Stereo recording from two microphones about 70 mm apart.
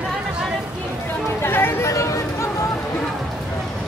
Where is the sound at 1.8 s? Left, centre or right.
Left.